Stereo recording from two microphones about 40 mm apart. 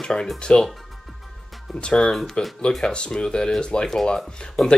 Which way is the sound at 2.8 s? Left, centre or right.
Centre.